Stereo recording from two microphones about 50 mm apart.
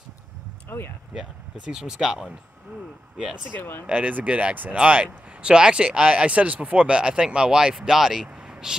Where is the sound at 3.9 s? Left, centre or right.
Right; by 8.7 s centre.